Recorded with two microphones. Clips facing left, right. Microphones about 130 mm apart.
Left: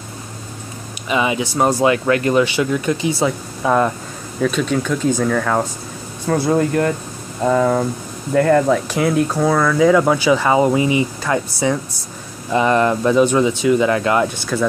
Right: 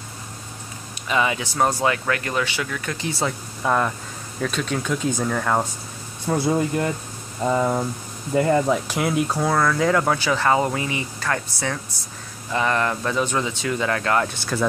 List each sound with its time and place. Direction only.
1.0 s speech: 15° left (ahead or behind)
3.2 s speech: 5° left (ahead or behind)
6.6 s speech: 60° left (ahead or behind)
8.6 s speech: 10° right (ahead or behind); by 14.3 s 15° left (ahead or behind)
14.5 s speech: centre (ahead or behind)